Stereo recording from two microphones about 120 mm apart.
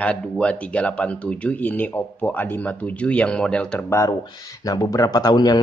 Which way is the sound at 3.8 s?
25° left (ahead or behind).